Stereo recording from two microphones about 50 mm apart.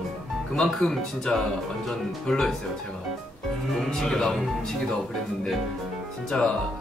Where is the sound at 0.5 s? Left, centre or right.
Centre.